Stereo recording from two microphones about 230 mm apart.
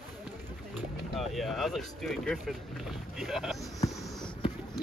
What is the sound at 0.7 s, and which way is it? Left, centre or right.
Speech, centre.